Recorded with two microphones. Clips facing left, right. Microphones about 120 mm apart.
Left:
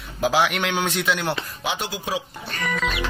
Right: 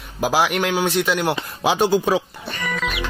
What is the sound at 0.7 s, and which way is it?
Speech, 5° right (ahead or behind).